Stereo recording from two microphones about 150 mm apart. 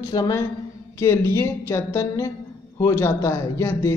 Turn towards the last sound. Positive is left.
turn(degrees=20)  # may be behind; listen again after turning